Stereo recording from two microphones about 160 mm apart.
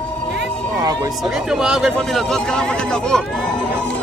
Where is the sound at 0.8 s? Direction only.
25° right (ahead or behind).